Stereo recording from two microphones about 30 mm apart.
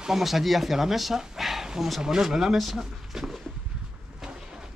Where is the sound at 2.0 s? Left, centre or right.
Centre.